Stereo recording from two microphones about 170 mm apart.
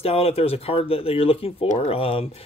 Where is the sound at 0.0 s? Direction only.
35° left (ahead or behind).